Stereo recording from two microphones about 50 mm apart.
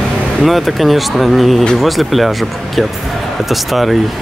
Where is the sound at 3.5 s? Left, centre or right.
Centre.